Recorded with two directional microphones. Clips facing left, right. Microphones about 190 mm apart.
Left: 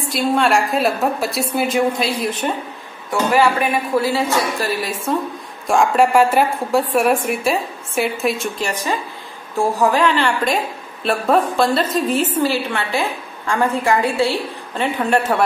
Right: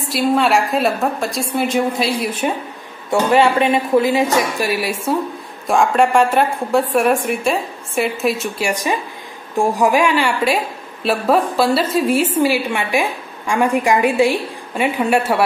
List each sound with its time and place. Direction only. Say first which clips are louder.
0.1 s a woman's voice: right 1 dB; centre (ahead or behind)
3.1 s a woman's voice: right 2 dB; 25° right (ahead or behind)
5.7 s a woman's voice: even; centre (ahead or behind)